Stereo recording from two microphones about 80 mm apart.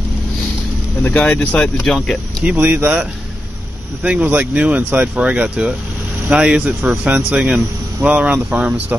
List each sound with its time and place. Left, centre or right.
1.0 s speech: centre
1.8 s speech: centre
2.4 s speech: centre